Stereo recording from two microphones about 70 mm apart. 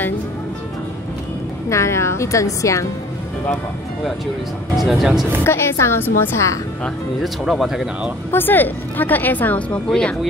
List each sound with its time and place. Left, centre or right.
1.7 s a woman's voice: left
4.7 s speech: centre
5.4 s a woman's voice: left
7.4 s speech: centre
8.3 s a woman's voice: left; by 10.1 s centre